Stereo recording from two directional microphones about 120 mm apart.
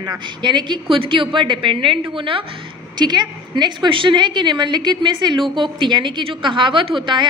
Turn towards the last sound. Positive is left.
turn(degrees=-45)  # may be behind; listen again after turning